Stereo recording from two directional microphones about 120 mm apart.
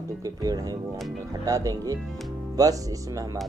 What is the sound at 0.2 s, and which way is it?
Speech, 30° right (ahead or behind).